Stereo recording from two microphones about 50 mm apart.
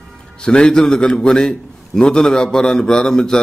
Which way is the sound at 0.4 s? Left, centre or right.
Centre.